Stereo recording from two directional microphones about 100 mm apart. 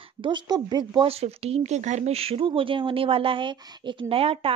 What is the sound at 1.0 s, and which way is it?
Speech, 85° right.